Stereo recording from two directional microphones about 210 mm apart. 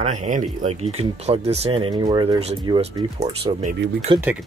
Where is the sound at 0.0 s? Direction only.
35° right (ahead or behind).